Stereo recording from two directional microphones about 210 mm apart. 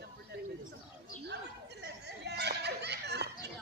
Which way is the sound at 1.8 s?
55° right (ahead or behind).